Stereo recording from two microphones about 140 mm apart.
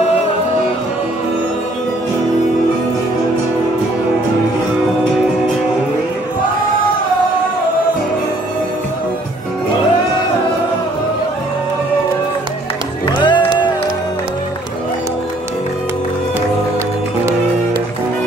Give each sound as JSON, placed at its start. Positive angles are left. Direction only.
{"t": 13.2, "sound": "music", "side_deg": 35}